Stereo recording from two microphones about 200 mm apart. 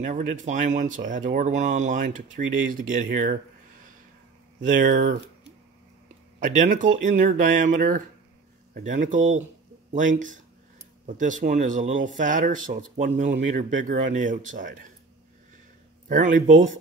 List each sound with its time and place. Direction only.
0.0 s speech: 35° right (ahead or behind)
4.6 s speech: 40° right (ahead or behind)
6.4 s speech: 40° right (ahead or behind)
16.1 s speech: 40° right (ahead or behind)